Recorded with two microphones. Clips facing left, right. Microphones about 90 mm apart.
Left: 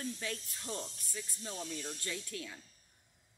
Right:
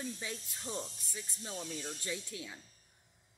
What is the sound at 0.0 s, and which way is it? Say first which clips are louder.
Speech: left 1 dB; 15° right (ahead or behind).